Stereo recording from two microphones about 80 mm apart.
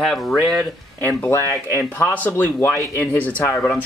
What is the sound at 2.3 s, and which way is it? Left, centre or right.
Speech, left.